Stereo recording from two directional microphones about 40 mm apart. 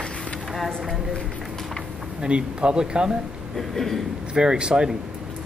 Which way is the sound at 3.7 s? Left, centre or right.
Centre.